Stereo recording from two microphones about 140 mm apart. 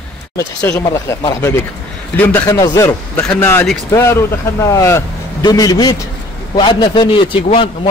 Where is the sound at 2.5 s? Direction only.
25° left (ahead or behind).